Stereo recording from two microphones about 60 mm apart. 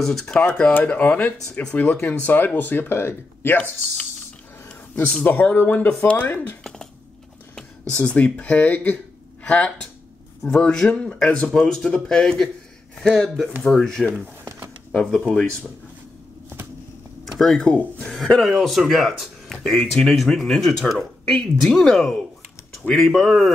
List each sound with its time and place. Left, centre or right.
0.0 s speech: centre
0.4 s speech: centre
1.5 s speech: centre
1.8 s speech: left
5.0 s speech: left
7.5 s speech: centre
14.9 s speech: centre
17.2 s a sound: centre
18.4 s speech: centre